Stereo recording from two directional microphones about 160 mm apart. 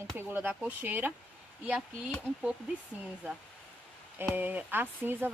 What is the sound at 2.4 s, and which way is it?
Speech, 5° right (ahead or behind).